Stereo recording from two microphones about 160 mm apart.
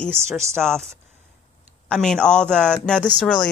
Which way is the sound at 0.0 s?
5° left (ahead or behind).